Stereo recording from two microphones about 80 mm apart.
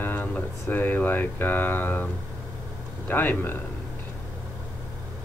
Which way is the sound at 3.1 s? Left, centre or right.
Left.